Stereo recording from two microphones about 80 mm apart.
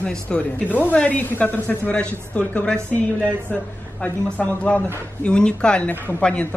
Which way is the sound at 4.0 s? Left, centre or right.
Centre.